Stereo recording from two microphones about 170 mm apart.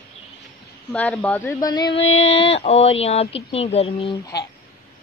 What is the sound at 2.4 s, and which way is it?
Speech, 35° left (ahead or behind).